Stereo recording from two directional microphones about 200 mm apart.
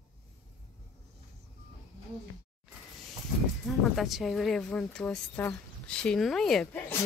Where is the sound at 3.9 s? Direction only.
Centre (ahead or behind).